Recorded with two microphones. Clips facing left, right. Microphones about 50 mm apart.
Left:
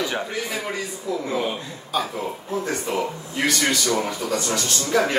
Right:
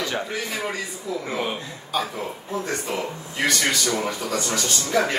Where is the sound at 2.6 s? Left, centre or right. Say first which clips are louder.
Left 3 dB; centre.